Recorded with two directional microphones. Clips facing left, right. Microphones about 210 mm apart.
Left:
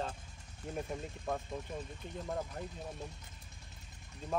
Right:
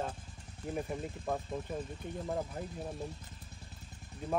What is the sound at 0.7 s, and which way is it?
Speech, 5° right (ahead or behind).